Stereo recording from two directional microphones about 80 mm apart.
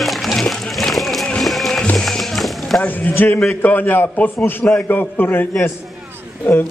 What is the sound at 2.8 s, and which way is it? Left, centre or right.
A man's voice, left.